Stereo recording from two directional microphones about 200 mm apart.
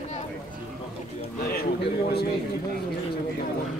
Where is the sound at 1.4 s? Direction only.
50° left (ahead or behind).